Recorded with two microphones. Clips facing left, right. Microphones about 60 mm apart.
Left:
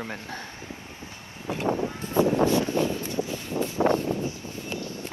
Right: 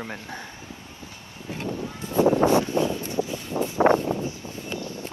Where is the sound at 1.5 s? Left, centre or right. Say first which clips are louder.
Left 5 dB; left.